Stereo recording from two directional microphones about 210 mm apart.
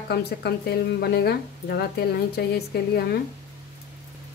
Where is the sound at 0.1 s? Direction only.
50° left (ahead or behind).